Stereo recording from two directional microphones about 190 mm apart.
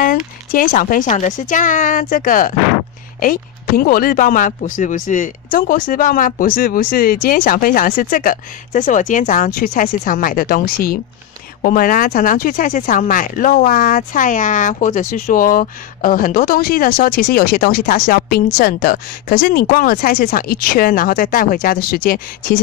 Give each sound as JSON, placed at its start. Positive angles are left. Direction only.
{"t": 0.0, "sound": "speech", "side_deg": 45}